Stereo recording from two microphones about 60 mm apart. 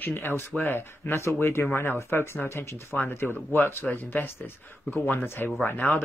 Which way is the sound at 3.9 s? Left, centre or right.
Left.